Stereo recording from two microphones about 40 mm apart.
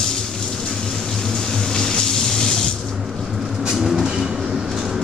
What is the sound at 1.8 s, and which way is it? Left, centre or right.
Vehicle, centre.